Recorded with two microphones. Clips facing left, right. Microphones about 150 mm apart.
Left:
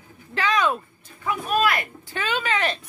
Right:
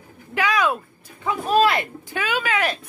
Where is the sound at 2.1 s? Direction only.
10° right (ahead or behind).